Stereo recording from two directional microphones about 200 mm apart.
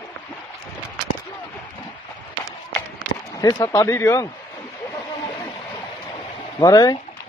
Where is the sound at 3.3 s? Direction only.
20° left (ahead or behind).